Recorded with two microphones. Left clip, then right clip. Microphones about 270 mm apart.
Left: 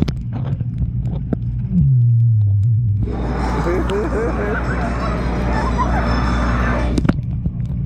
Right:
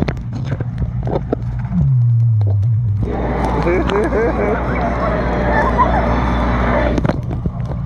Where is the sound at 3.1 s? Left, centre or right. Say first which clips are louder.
Right 5 dB; left.